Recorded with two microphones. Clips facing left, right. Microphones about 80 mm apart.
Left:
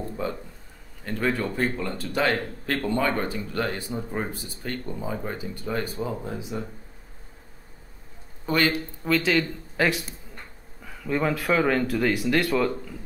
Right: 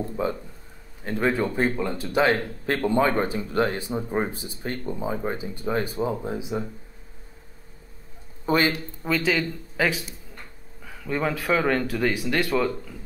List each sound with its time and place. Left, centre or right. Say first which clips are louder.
0.0 s speech: right 3 dB; centre
8.5 s speech: right 2 dB; right
9.0 s speech: left 1 dB; centre